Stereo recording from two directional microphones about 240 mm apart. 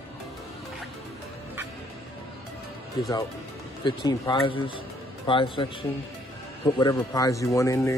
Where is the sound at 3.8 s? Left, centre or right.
Centre.